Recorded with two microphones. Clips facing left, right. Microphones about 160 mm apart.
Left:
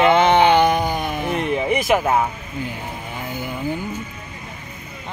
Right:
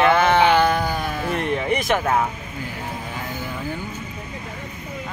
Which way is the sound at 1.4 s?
Centre (ahead or behind).